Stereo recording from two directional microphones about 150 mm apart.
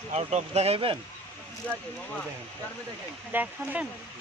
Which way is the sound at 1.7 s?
5° left (ahead or behind).